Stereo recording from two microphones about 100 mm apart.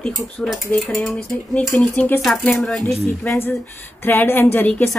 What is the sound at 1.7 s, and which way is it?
Speech, 15° left (ahead or behind).